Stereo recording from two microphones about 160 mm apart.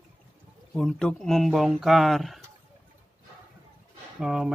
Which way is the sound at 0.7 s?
5° left (ahead or behind).